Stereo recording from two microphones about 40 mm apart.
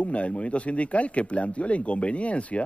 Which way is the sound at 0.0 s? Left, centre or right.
Left.